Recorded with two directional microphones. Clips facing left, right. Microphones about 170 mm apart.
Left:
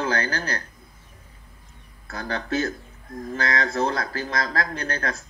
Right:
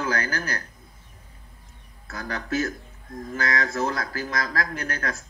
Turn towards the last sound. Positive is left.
turn(degrees=30)  # may be behind; listen again after turning